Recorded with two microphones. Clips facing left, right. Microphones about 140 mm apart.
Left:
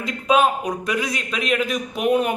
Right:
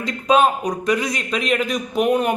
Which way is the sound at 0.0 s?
5° left (ahead or behind).